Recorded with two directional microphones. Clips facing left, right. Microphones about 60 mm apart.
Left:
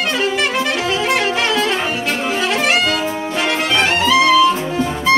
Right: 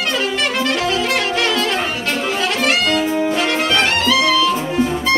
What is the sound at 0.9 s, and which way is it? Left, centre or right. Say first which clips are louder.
Music: left 1 dB; left.